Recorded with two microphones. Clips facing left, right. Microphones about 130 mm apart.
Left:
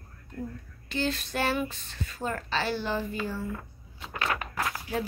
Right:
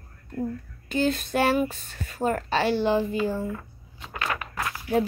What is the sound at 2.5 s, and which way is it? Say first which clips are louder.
Speech: right 7 dB; 55° right (ahead or behind).